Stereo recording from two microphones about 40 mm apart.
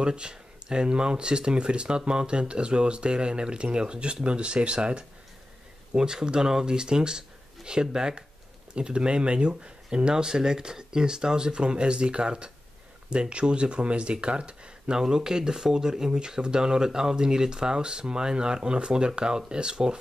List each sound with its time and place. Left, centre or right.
0.0 s speech: right
15.0 s speech: centre